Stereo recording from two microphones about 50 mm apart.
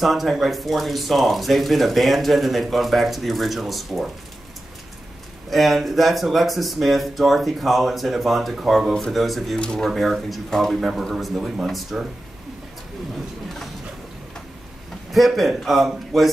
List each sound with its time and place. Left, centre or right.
0.0 s speech: centre
5.5 s speech: centre
9.6 s speech: centre
9.8 s speech: centre
10.8 s a man's voice: centre
11.3 s a man's voice: centre
11.6 s speech: centre
15.1 s speech: centre